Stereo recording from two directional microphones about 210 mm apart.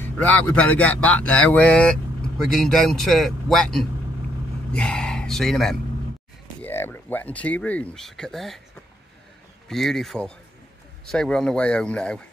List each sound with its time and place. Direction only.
0.0 s speech: 5° left (ahead or behind)
9.7 s speech: centre (ahead or behind)